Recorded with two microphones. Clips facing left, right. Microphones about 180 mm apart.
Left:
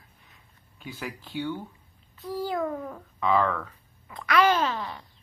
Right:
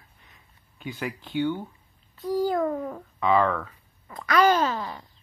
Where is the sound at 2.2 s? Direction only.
45° right (ahead or behind).